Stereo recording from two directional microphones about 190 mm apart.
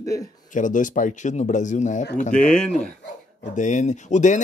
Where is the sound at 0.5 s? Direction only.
40° left (ahead or behind).